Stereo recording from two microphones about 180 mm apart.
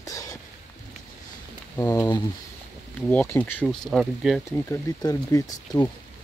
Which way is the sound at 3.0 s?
10° left (ahead or behind).